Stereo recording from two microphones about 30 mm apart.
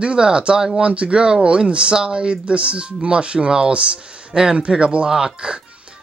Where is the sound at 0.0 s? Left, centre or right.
Right.